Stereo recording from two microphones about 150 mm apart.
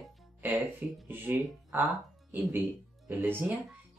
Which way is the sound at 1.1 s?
15° right (ahead or behind).